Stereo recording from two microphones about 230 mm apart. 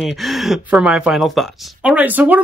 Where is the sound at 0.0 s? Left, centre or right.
Centre.